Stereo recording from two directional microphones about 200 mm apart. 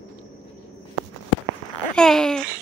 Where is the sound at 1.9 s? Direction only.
5° left (ahead or behind).